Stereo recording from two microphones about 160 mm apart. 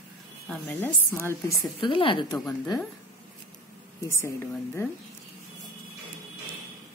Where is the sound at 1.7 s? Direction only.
30° left (ahead or behind).